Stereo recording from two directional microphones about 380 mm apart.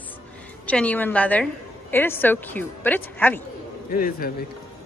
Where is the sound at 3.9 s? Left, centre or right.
Left.